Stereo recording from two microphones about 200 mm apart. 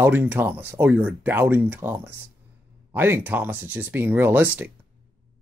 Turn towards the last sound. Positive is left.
turn(degrees=-10)  # may be behind; listen again after turning